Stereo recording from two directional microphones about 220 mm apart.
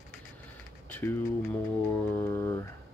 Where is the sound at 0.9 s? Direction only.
10° left (ahead or behind).